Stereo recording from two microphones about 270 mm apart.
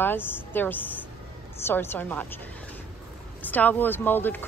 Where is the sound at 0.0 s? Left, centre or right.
Centre.